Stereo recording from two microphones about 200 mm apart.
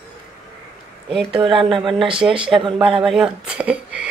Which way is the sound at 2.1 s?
5° right (ahead or behind).